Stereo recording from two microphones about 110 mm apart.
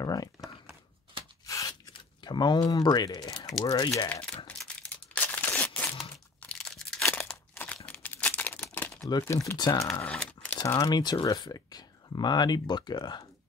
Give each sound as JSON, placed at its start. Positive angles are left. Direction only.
{"t": 0.0, "sound": "speech", "side_deg": 35}
{"t": 1.4, "sound": "tearing", "side_deg": 30}
{"t": 2.2, "sound": "speech", "side_deg": 40}
{"t": 4.1, "sound": "speech", "side_deg": 10}
{"t": 4.5, "sound": "tearing", "side_deg": 10}
{"t": 6.4, "sound": "crunch", "side_deg": 5}
{"t": 7.5, "sound": "crumpling", "side_deg": 15}
{"t": 9.3, "sound": "speech", "side_deg": 25}
{"t": 9.9, "sound": "crumpling", "side_deg": 15}
{"t": 10.9, "sound": "speech", "side_deg": 40}